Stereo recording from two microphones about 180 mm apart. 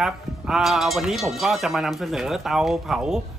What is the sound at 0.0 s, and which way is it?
A man's voice, centre (ahead or behind).